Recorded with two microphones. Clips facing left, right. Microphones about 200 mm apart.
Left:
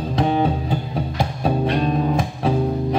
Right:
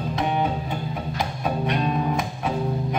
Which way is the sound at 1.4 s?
30° left (ahead or behind).